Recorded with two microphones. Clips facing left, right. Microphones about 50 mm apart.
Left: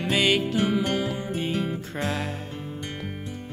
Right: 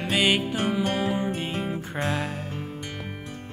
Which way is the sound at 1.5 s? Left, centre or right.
Centre.